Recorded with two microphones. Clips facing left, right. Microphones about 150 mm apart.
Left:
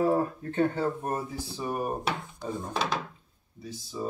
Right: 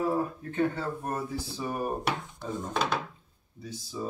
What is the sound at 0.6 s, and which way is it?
Speech, 25° left (ahead or behind).